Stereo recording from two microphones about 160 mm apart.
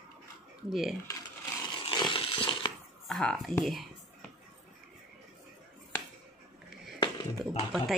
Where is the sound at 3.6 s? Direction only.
Centre (ahead or behind).